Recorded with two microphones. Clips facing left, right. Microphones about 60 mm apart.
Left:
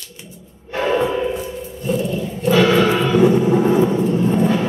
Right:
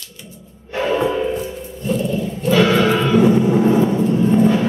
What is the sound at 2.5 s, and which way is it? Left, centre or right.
Music, centre.